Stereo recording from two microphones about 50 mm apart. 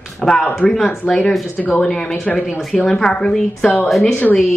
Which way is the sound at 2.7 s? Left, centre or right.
Centre.